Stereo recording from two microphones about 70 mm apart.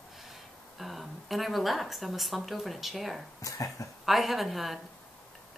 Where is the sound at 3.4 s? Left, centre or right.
Left.